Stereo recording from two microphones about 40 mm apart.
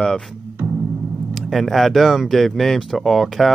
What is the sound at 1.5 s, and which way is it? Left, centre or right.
Speech, centre.